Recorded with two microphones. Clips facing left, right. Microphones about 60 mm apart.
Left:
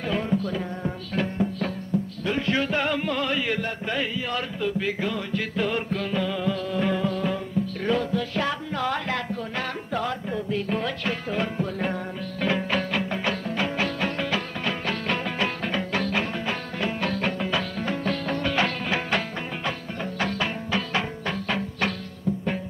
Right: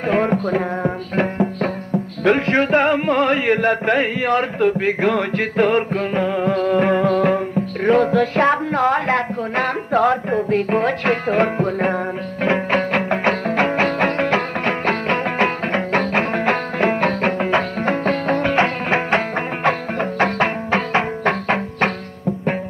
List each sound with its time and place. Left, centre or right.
0.1 s music: right
19.6 s music: right